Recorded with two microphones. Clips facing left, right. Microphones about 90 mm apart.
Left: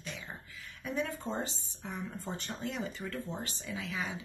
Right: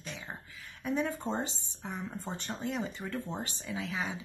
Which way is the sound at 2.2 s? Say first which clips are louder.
Right 3 dB; 30° right (ahead or behind).